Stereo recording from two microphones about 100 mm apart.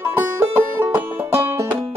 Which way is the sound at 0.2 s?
20° right (ahead or behind).